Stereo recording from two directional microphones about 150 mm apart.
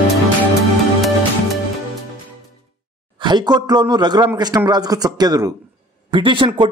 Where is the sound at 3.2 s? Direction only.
30° right (ahead or behind).